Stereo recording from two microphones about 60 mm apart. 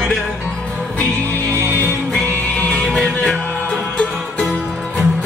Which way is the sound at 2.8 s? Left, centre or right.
Centre.